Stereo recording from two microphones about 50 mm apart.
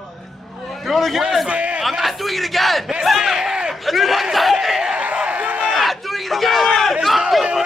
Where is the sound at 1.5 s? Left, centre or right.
Right.